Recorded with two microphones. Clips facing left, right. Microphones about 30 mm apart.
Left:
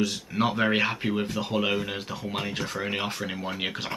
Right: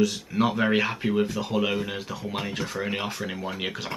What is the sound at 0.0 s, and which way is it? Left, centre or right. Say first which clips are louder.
Speech: right 2 dB; centre.